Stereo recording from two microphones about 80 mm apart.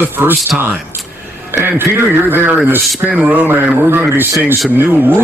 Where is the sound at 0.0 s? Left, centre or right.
Right.